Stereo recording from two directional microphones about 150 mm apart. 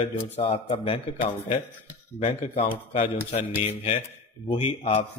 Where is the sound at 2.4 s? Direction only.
60° left (ahead or behind).